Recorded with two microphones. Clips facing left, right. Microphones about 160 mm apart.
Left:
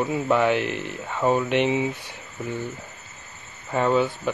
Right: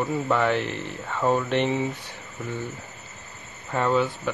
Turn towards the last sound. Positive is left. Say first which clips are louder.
# left 2 dB
turn(degrees=10)  # may be behind; listen again after turning